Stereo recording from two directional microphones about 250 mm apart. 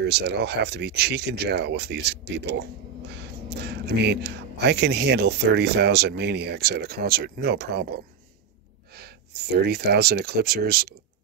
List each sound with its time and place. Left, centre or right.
0.0 s speech: right